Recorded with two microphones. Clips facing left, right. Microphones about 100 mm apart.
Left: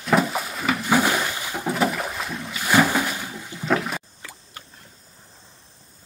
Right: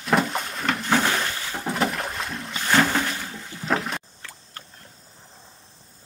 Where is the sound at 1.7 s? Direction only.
Centre (ahead or behind).